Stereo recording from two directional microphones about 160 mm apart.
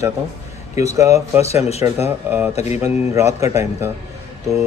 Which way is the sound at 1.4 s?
40° left (ahead or behind).